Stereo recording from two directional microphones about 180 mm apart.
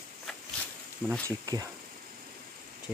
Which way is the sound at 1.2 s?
20° right (ahead or behind).